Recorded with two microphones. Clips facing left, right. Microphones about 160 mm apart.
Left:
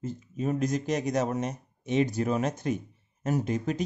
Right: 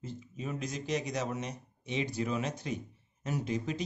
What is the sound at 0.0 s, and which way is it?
Speech, 45° left (ahead or behind).